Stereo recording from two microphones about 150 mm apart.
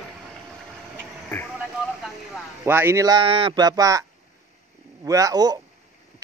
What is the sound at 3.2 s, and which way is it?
Speech, 35° right (ahead or behind).